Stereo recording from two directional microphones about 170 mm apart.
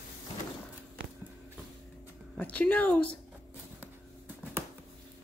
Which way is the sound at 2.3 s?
10° left (ahead or behind).